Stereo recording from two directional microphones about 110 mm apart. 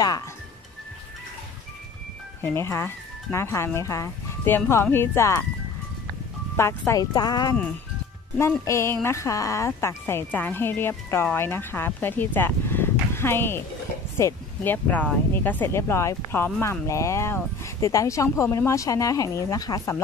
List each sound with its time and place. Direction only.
2.4 s speech: 25° left (ahead or behind)
6.9 s speech: 35° left (ahead or behind)
8.4 s speech: 25° left (ahead or behind)